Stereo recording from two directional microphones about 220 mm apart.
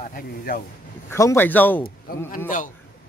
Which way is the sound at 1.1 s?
10° left (ahead or behind).